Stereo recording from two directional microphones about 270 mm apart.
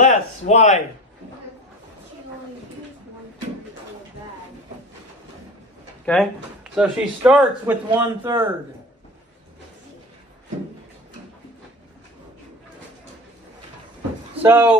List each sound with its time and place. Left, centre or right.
0.0 s speech: left
6.0 s speech: centre
14.3 s speech: centre